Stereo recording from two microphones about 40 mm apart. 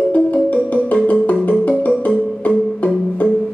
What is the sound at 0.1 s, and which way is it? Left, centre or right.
Music, left.